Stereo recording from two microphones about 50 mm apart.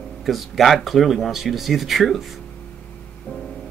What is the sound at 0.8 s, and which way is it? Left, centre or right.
Speech, centre.